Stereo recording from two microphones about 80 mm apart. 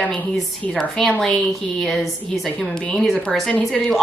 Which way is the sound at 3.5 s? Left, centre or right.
Centre.